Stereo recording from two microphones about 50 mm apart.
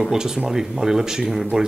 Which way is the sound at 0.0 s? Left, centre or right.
Centre.